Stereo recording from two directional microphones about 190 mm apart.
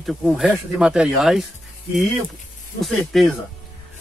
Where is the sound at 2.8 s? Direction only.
Centre (ahead or behind).